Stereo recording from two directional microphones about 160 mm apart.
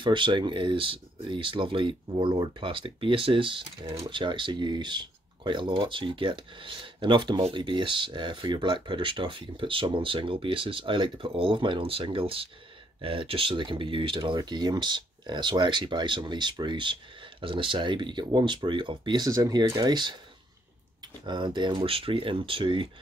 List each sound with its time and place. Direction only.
0.0 s speech: 30° right (ahead or behind)